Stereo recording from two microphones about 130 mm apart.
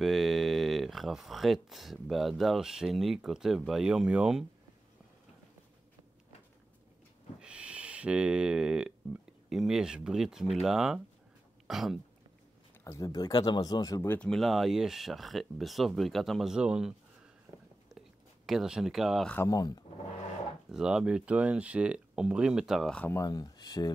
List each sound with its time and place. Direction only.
0.0 s speech: centre (ahead or behind)
7.3 s speech: 10° right (ahead or behind)
12.8 s speech: 25° left (ahead or behind)
14.0 s speech: 15° left (ahead or behind)
14.3 s speech: centre (ahead or behind)
17.8 s whispering: centre (ahead or behind)
19.3 s speech: 25° left (ahead or behind)
20.7 s speech: 5° right (ahead or behind)
23.0 s speech: 25° left (ahead or behind)